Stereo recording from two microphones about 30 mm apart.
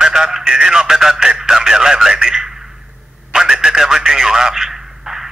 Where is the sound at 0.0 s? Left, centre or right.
Centre.